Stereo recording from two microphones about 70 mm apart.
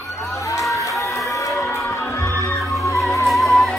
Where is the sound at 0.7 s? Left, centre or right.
Left.